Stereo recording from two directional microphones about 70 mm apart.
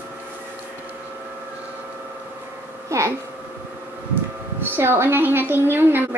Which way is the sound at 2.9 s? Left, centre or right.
Right.